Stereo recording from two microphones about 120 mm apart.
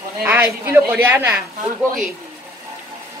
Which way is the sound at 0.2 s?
15° right (ahead or behind).